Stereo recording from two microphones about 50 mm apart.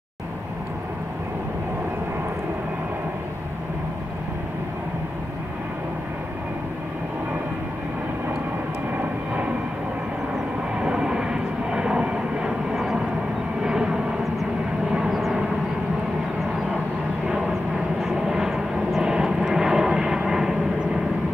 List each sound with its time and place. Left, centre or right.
10.8 s vehicle: centre
13.6 s vehicle: centre
18.0 s vehicle: centre